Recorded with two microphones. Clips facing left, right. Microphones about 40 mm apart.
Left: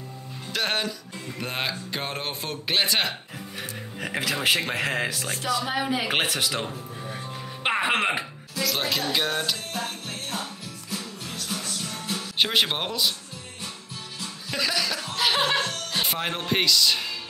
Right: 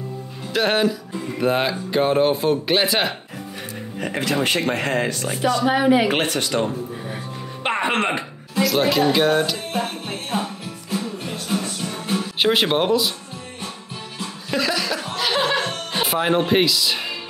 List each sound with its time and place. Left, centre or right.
0.5 s speech: centre
5.7 s speech: right
6.0 s speech: centre
7.6 s music: centre
8.6 s speech: centre
9.7 s music: right
12.4 s speech: centre
14.5 s chuckle: centre
15.1 s music: centre
15.6 s music: right
16.0 s speech: centre